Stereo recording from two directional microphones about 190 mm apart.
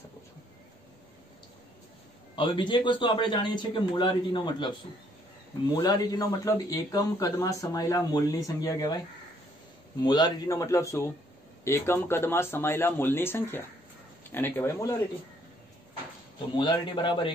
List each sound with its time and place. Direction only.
2.3 s a man's voice: 25° left (ahead or behind)
10.0 s speech: 20° left (ahead or behind)
16.5 s a man's voice: 25° left (ahead or behind)